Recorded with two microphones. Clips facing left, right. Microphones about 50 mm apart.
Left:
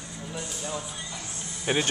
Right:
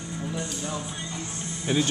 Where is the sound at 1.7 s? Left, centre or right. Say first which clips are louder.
Right 1 dB; left.